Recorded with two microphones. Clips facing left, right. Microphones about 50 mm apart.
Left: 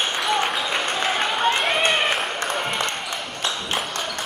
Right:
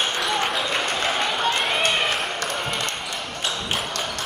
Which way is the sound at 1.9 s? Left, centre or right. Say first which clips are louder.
Left 2 dB; centre.